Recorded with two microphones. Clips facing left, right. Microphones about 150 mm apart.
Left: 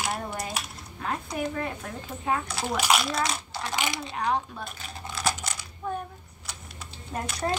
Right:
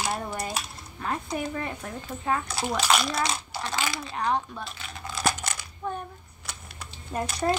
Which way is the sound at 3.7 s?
20° left (ahead or behind).